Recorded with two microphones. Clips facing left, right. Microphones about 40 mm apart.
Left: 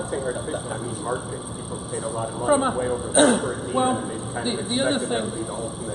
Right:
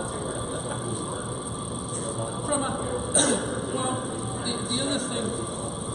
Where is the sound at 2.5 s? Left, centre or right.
Centre.